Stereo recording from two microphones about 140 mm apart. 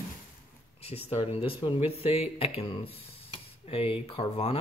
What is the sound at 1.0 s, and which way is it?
Speech, 45° left (ahead or behind).